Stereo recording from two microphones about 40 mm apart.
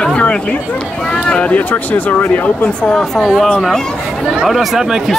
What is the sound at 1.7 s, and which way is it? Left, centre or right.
Speech, left.